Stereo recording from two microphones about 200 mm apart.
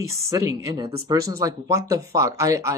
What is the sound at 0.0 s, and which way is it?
Speech, 15° right (ahead or behind).